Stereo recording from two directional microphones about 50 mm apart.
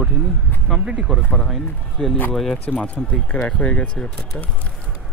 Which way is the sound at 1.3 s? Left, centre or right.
Centre.